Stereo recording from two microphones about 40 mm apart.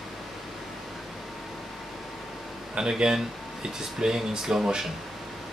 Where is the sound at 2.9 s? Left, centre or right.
Centre.